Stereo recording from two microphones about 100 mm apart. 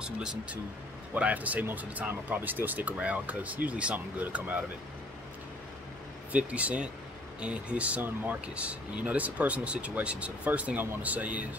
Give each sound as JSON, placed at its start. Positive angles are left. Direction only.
{"t": 0.0, "sound": "speech", "side_deg": -10}
{"t": 6.3, "sound": "speech", "side_deg": -15}